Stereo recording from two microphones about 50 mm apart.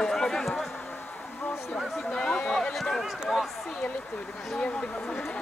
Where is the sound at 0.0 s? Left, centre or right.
Centre.